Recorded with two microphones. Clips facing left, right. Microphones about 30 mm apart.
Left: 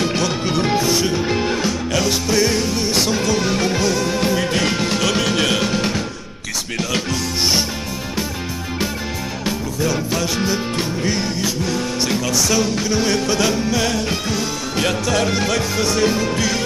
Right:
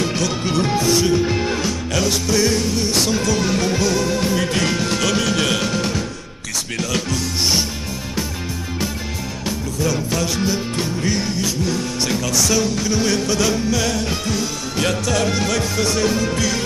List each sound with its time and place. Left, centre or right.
0.0 s music: centre
9.8 s music: centre